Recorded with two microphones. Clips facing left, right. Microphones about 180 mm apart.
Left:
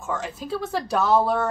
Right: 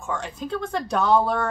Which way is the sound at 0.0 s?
5° left (ahead or behind).